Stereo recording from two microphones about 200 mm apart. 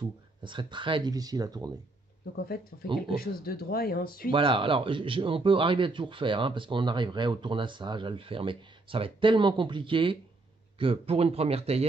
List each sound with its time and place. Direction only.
0.4 s a man's voice: 25° right (ahead or behind)
2.3 s speech: 50° left (ahead or behind)
4.3 s a man's voice: 25° right (ahead or behind)